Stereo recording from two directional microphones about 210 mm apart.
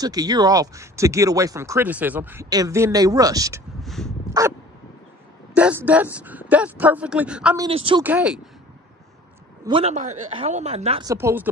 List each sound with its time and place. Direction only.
0.0 s speech: 20° right (ahead or behind)
3.8 s dog: centre (ahead or behind)
4.3 s dog: 15° right (ahead or behind)
5.5 s speech: 5° right (ahead or behind)
7.5 s speech: 25° right (ahead or behind)
8.0 s speech: 5° right (ahead or behind)
9.7 s a woman's voice: 30° right (ahead or behind)
11.1 s speech: 10° right (ahead or behind)